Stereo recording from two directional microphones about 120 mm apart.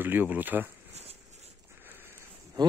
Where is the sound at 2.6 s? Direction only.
35° right (ahead or behind).